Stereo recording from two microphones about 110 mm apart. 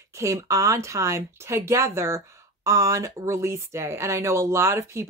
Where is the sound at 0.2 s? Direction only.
30° right (ahead or behind).